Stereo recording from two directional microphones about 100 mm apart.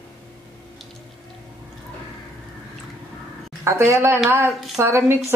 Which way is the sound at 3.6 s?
25° right (ahead or behind).